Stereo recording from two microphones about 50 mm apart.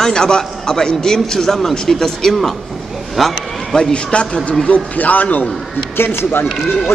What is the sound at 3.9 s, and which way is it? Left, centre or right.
Speech, centre.